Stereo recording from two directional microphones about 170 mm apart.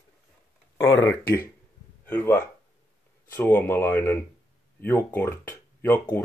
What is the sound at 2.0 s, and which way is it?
Speech, 15° left (ahead or behind).